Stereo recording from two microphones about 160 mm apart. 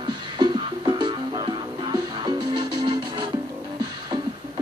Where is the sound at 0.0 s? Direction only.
30° right (ahead or behind).